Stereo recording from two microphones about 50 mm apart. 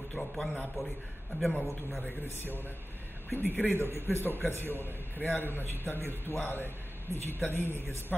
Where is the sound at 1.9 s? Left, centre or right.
Centre.